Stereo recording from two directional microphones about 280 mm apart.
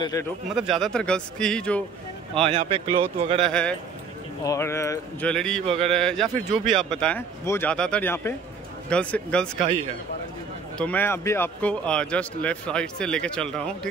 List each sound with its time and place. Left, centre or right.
0.0 s speech: centre
0.6 s speech: centre
2.4 s speech: centre
3.4 s speech: centre
10.8 s speech: centre